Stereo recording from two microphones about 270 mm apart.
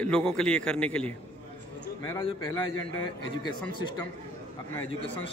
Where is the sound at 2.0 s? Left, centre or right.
Centre.